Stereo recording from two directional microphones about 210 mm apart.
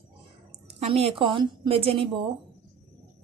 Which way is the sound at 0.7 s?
30° right (ahead or behind).